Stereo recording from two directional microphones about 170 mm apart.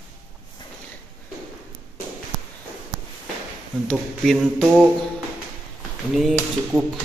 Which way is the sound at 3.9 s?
5° left (ahead or behind).